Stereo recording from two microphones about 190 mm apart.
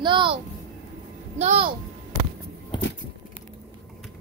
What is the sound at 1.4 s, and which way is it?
Speech, 30° right (ahead or behind).